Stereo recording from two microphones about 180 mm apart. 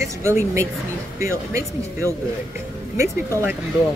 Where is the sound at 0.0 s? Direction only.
15° right (ahead or behind).